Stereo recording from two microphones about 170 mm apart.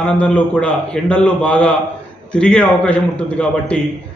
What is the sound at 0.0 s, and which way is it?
A man's voice, 5° left (ahead or behind).